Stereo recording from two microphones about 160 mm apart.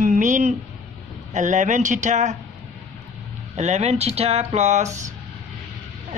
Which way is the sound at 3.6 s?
45° right (ahead or behind).